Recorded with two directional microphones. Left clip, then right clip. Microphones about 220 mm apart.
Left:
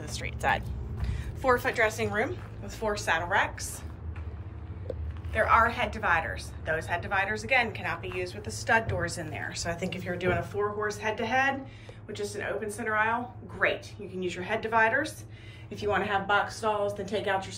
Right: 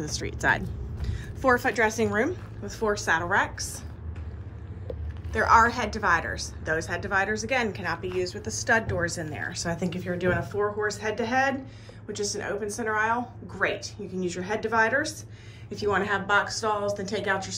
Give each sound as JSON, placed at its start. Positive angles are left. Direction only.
{"t": 0.3, "sound": "speech", "side_deg": -70}
{"t": 0.7, "sound": "a woman's voice", "side_deg": -20}
{"t": 5.3, "sound": "a woman's voice", "side_deg": -10}